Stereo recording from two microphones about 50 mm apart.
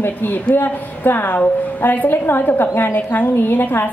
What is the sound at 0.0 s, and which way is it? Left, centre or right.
A woman's voice, left.